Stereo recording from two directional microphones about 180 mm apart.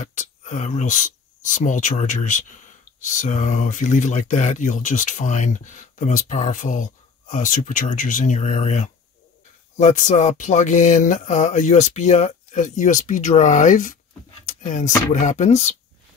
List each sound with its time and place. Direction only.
0.0 s speech: 45° left (ahead or behind)